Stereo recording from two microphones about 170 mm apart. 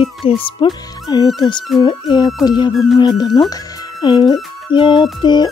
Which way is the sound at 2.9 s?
25° left (ahead or behind).